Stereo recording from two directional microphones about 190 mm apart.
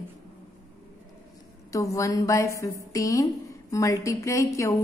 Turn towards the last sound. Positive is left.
turn(degrees=15)  # may be behind; listen again after turning